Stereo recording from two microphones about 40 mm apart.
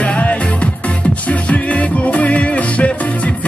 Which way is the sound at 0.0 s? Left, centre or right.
Left.